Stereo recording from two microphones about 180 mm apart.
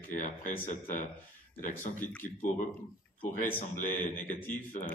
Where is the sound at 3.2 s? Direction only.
10° left (ahead or behind).